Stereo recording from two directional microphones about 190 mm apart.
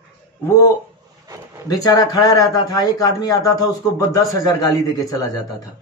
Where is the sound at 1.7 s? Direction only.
20° left (ahead or behind).